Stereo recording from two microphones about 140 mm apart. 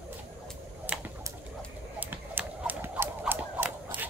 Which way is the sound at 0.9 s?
10° right (ahead or behind).